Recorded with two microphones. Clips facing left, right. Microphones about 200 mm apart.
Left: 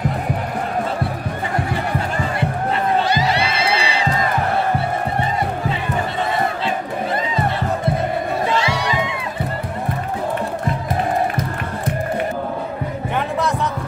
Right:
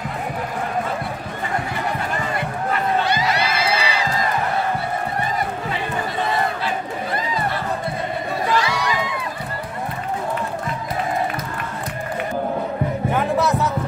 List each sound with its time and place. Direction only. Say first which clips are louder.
3.3 s music: left 2 dB; 30° left (ahead or behind)
8.5 s crowd: left 1 dB; 25° left (ahead or behind)
13.1 s music: right 1 dB; 5° right (ahead or behind)